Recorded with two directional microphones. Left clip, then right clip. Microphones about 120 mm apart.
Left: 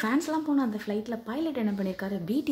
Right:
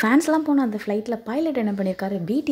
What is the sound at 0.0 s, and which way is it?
Speech, 60° right (ahead or behind).